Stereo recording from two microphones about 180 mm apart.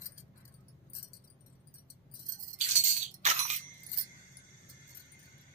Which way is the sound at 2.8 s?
40° right (ahead or behind).